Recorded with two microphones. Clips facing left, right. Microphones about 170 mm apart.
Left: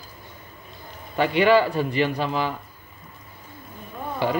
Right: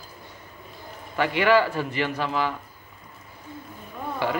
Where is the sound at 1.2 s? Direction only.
20° left (ahead or behind).